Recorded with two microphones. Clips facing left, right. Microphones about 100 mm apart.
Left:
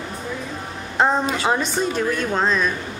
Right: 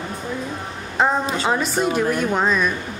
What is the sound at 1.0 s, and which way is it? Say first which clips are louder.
A woman's voice: left 1 dB; centre (ahead or behind).